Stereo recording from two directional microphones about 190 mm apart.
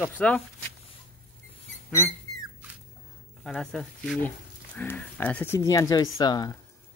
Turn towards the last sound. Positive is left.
turn(degrees=20)  # may be behind; listen again after turning